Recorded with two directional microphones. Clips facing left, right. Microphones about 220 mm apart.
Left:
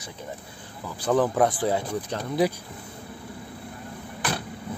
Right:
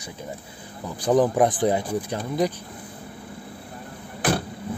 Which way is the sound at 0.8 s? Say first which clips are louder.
Right 3 dB; 15° right (ahead or behind).